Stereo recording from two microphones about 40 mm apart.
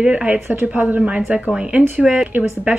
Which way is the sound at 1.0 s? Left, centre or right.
Right.